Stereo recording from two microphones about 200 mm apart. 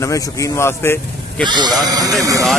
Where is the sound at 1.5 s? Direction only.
20° right (ahead or behind).